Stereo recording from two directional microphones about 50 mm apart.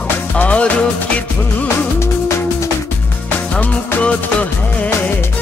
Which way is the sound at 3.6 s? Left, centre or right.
Left.